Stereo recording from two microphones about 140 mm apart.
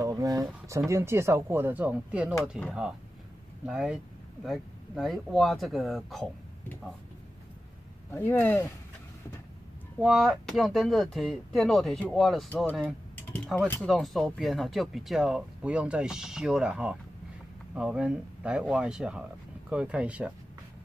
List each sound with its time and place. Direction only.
0.0 s speech: 25° right (ahead or behind); by 6.2 s centre (ahead or behind)
8.1 s speech: 15° left (ahead or behind)
9.9 s speech: centre (ahead or behind)
13.7 s speech: centre (ahead or behind)